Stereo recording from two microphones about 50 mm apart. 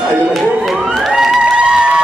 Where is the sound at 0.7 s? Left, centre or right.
Centre.